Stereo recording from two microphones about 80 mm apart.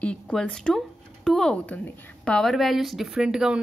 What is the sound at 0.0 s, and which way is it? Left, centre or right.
A woman's voice, centre.